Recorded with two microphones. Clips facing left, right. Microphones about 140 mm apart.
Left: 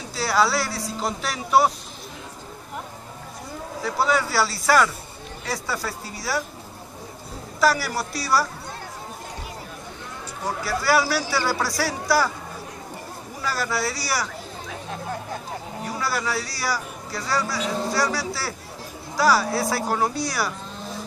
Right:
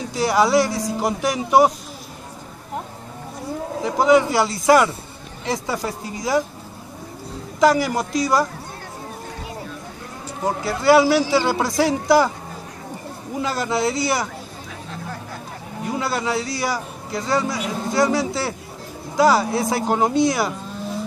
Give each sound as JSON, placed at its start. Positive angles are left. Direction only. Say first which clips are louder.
{"t": 0.1, "sound": "speech", "louder": "right 5 dB", "side_deg": -15}
{"t": 3.8, "sound": "a man's voice", "louder": "right 7 dB", "side_deg": -20}
{"t": 7.6, "sound": "a man's voice", "louder": "right 5 dB", "side_deg": -20}
{"t": 10.4, "sound": "a man's voice", "louder": "right 6 dB", "side_deg": -20}
{"t": 13.4, "sound": "a man's voice", "louder": "right 5 dB", "side_deg": -20}
{"t": 15.8, "sound": "a man's voice", "louder": "right 4 dB", "side_deg": -20}